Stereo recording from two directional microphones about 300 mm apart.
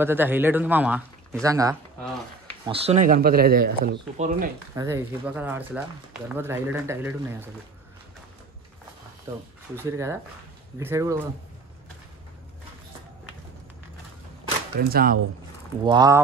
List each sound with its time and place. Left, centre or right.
0.0 s speech: centre; by 4.5 s right
4.7 s speech: centre
9.8 s speech: centre
14.8 s speech: right
15.8 s speech: centre